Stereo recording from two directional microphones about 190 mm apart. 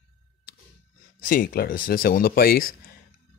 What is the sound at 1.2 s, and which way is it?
Speech, 50° left (ahead or behind).